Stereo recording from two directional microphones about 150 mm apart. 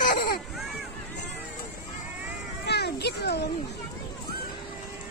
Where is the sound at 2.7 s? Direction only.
90° left.